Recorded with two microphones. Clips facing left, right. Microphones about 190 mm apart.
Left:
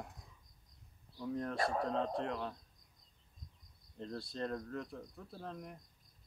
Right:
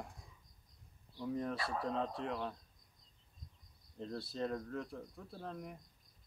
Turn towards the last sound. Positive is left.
turn(degrees=0)  # may be behind; listen again after turning